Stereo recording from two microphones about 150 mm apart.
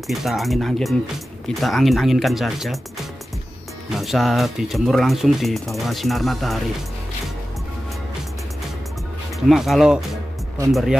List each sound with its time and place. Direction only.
0.1 s speech: centre (ahead or behind)
3.9 s speech: centre (ahead or behind)
9.5 s speech: centre (ahead or behind)